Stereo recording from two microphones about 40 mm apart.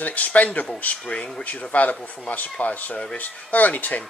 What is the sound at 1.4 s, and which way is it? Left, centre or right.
Speech, left.